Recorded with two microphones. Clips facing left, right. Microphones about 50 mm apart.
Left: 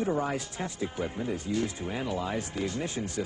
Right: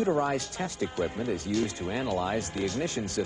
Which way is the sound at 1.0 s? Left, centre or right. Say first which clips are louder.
Right 3 dB; centre.